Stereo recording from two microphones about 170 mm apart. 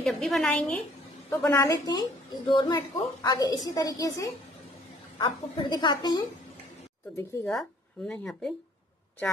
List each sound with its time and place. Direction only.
0.0 s speech: centre (ahead or behind)
1.5 s a woman's voice: 15° left (ahead or behind)
7.4 s speech: 5° left (ahead or behind)